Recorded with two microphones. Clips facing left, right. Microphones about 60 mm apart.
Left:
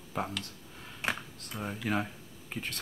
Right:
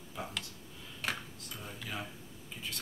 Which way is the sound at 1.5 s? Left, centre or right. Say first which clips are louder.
Left 10 dB; left.